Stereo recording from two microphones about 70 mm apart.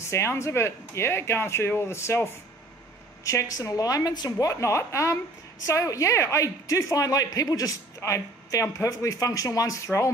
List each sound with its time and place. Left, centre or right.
0.1 s speech: left
3.3 s a woman's voice: left
4.5 s speech: left
8.0 s speech: left